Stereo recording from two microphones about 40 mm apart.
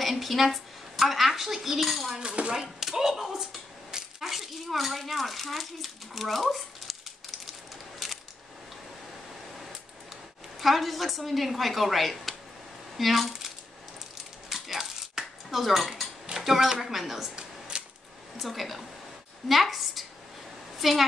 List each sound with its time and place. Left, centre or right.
0.0 s speech: centre
2.1 s dishes: right
2.5 s speech: centre
3.9 s coin: centre
10.6 s a woman's voice: centre
14.5 s cutlery: centre
16.3 s speech: centre
17.4 s a sound: right
18.4 s a woman's voice: centre
20.7 s a sound: centre